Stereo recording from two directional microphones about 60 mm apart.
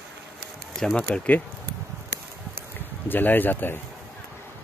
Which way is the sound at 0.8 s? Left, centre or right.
Centre.